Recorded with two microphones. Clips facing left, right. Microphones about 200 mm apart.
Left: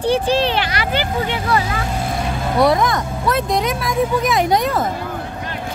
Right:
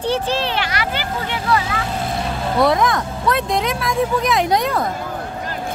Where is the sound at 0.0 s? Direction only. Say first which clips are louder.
Left 4 dB; 15° left (ahead or behind).